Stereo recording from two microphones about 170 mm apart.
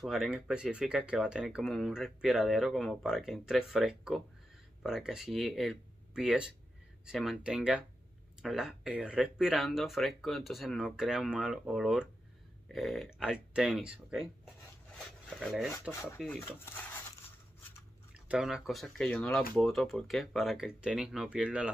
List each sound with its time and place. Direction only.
0.0 s speech: centre (ahead or behind)
15.9 s speech: 15° left (ahead or behind)
18.1 s speech: 5° right (ahead or behind)